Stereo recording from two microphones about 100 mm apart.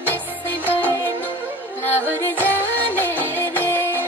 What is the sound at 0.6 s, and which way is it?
Music, 20° left (ahead or behind).